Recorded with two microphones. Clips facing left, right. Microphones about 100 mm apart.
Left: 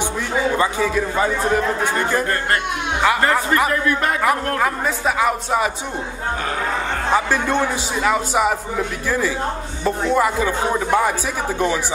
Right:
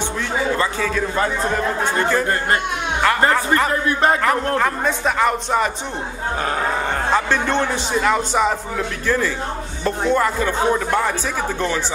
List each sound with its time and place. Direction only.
0.6 s speech: 15° left (ahead or behind)
3.7 s speech: 30° right (ahead or behind)
4.2 s a man's voice: 5° left (ahead or behind)
7.2 s speech: 10° left (ahead or behind)